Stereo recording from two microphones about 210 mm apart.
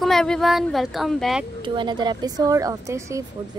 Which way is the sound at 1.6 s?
20° right (ahead or behind).